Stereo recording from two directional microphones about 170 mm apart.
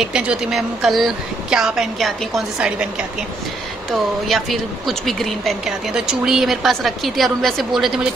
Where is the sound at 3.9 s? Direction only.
Centre (ahead or behind).